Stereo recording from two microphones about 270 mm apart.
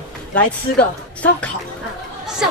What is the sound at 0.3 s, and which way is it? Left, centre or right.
Speech, centre.